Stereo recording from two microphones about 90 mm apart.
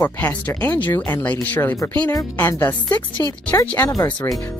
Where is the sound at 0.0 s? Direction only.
20° left (ahead or behind).